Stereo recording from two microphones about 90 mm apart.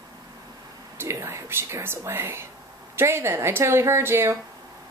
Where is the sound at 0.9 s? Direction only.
30° right (ahead or behind).